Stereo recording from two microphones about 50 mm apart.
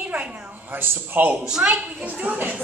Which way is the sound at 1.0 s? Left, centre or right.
Right.